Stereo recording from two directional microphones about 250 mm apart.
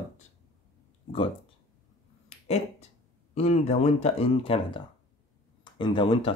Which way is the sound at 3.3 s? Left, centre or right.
Left.